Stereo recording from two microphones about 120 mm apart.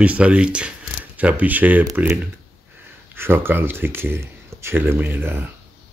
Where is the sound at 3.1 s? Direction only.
20° right (ahead or behind).